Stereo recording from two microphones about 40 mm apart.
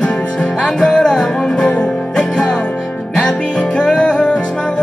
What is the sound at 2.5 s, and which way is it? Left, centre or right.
Music, left.